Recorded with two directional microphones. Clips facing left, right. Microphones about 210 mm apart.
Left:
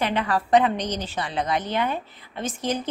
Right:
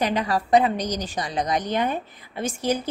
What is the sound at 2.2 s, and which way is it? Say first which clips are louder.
Speech: right 2 dB; 10° right (ahead or behind).